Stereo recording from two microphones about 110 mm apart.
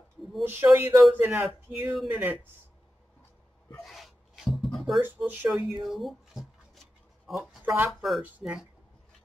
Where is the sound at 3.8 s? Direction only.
Centre (ahead or behind).